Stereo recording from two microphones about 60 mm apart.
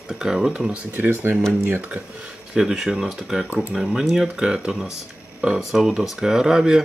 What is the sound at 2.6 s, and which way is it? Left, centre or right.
Speech, centre.